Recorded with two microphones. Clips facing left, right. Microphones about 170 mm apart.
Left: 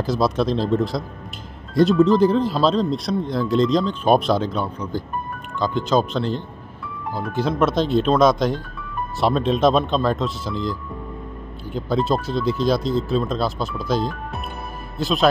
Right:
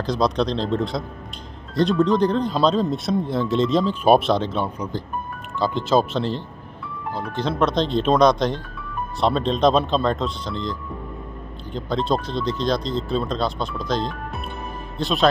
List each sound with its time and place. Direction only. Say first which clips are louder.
0.0 s speech: left 1 dB; 5° left (ahead or behind)